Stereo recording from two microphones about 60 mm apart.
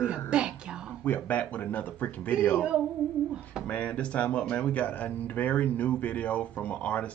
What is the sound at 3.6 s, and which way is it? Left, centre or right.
Speech, left.